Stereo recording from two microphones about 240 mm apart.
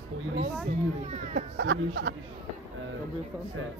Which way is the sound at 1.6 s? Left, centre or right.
Right.